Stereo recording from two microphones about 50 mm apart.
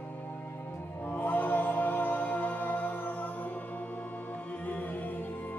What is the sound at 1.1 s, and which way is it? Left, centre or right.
Music, left.